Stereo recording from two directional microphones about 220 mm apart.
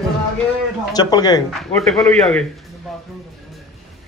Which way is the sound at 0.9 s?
20° left (ahead or behind).